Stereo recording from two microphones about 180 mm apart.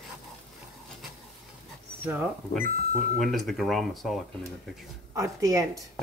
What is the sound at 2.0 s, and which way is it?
Speech, 10° right (ahead or behind).